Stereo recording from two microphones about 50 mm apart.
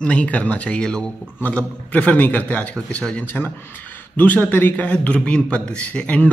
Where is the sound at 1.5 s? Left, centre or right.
Left.